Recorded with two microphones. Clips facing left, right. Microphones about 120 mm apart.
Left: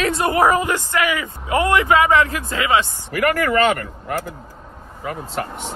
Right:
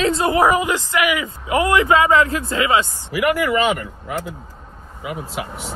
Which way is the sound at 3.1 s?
10° right (ahead or behind).